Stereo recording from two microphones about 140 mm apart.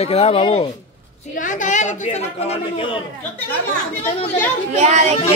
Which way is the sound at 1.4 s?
65° left (ahead or behind).